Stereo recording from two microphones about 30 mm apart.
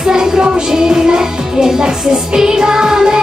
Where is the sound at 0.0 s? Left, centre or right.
Right.